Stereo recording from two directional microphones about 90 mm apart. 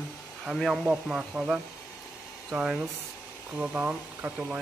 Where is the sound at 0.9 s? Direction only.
10° right (ahead or behind).